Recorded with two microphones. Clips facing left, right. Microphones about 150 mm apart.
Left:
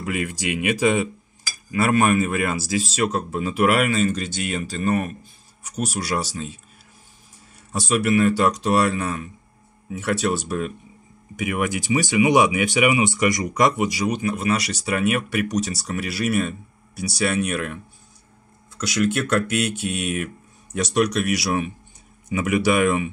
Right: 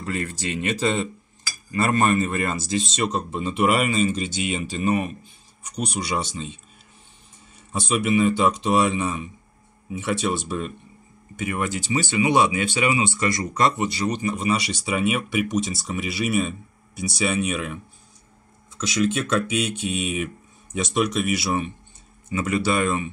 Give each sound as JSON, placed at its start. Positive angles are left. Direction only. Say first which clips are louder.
{"t": 0.0, "sound": "a man's voice", "louder": "left 2 dB", "side_deg": 15}
{"t": 7.7, "sound": "a man's voice", "louder": "left 2 dB", "side_deg": 5}
{"t": 9.0, "sound": "a man's voice", "louder": "even", "side_deg": -5}
{"t": 10.2, "sound": "a man's voice", "louder": "left 2 dB", "side_deg": 5}
{"t": 18.8, "sound": "a man's voice", "louder": "left 1 dB", "side_deg": 10}